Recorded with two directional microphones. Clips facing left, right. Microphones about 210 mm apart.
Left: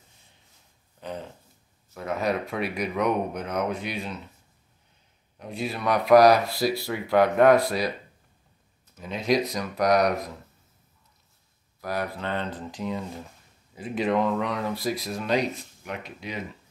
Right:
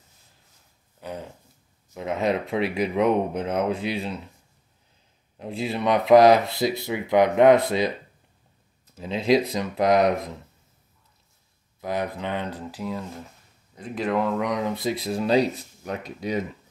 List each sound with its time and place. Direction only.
1.0 s a sound: 10° right (ahead or behind)
2.0 s speech: 20° right (ahead or behind)
5.4 s speech: 25° right (ahead or behind)
8.9 s speech: 30° right (ahead or behind)
11.8 s speech: 20° right (ahead or behind); by 16.3 s 40° right (ahead or behind)